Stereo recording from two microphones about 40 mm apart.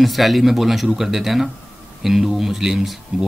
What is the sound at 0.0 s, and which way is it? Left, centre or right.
Speech, centre.